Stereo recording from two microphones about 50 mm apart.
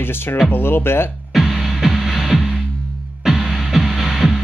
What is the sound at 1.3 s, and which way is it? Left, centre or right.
Music, centre.